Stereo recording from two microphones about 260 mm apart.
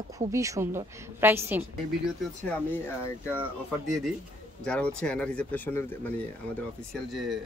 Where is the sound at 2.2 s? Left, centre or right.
Centre.